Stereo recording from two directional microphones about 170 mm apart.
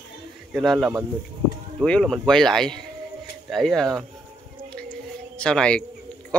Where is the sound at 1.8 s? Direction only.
5° left (ahead or behind).